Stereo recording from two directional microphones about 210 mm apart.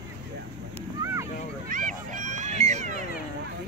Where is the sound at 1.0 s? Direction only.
15° right (ahead or behind).